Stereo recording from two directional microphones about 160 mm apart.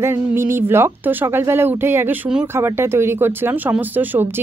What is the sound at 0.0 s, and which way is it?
Speech, 15° right (ahead or behind).